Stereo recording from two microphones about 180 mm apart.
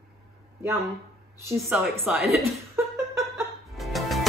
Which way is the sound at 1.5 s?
10° right (ahead or behind).